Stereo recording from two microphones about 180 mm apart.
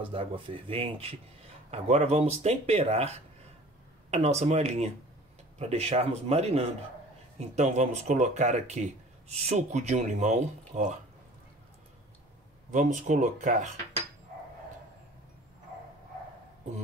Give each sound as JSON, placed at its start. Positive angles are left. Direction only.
{"t": 0.0, "sound": "speech", "side_deg": -30}
{"t": 12.7, "sound": "speech", "side_deg": -45}